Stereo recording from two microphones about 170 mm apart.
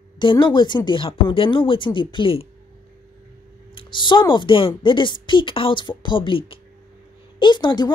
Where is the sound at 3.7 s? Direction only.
30° left (ahead or behind).